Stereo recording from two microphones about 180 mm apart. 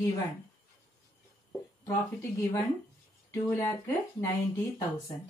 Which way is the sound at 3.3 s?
15° left (ahead or behind).